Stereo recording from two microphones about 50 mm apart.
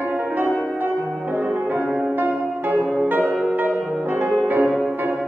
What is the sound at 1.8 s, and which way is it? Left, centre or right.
Music, right.